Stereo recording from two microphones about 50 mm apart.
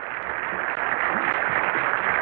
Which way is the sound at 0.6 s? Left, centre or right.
Centre.